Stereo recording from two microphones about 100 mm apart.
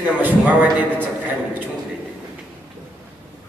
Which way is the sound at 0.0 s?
15° right (ahead or behind).